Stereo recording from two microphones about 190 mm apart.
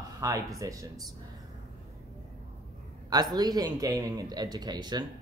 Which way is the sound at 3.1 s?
20° right (ahead or behind).